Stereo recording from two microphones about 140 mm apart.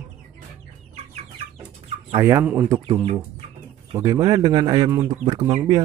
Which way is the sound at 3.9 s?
25° right (ahead or behind).